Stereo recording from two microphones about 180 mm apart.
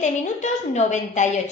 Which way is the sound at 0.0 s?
40° left (ahead or behind).